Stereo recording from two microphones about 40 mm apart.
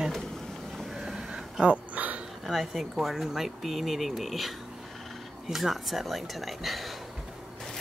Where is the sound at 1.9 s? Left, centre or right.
Right.